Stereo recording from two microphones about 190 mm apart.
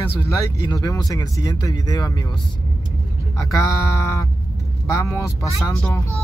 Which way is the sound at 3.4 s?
15° left (ahead or behind).